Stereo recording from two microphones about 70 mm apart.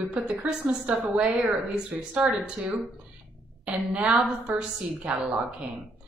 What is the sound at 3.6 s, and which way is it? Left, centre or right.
A woman's voice, centre.